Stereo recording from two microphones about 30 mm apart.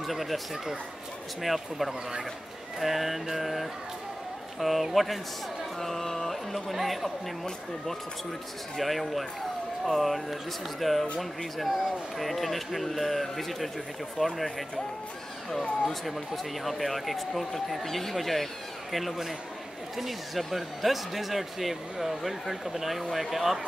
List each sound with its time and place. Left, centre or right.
0.0 s speech: centre
1.4 s speech: centre
2.8 s mantra: centre
3.3 s speech: centre
5.8 s a sound: centre
6.7 s speech: centre
8.7 s speech: centre
16.6 s speech: centre